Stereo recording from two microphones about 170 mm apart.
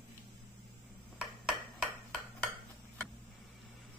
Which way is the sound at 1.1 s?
Centre (ahead or behind).